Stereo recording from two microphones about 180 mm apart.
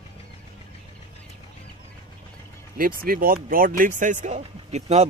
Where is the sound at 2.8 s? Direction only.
50° right (ahead or behind).